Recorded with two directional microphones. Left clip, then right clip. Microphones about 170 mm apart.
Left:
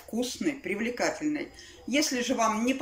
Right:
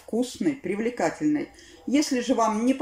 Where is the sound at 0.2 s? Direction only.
35° right (ahead or behind).